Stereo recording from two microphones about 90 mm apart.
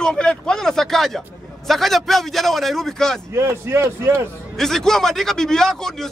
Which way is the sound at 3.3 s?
30° right (ahead or behind).